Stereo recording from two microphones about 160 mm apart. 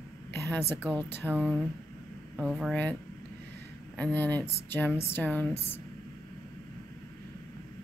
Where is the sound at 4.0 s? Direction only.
10° left (ahead or behind).